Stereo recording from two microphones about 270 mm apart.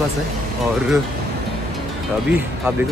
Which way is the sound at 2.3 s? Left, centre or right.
Centre.